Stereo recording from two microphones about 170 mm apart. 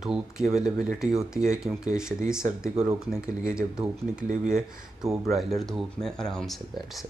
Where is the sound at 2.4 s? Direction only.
50° right (ahead or behind).